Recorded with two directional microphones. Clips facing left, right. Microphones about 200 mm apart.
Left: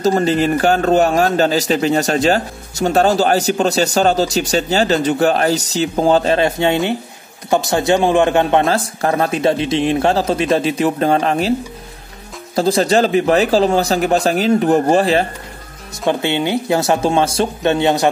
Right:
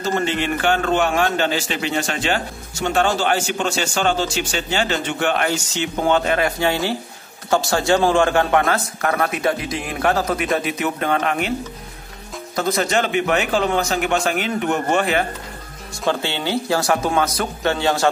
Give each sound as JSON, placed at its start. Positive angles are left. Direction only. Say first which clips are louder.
{"t": 0.0, "sound": "a man's voice", "louder": "left 7 dB", "side_deg": 40}
{"t": 12.5, "sound": "a man's voice", "louder": "left 6 dB", "side_deg": 30}
{"t": 16.1, "sound": "a man's voice", "louder": "left 5 dB", "side_deg": 15}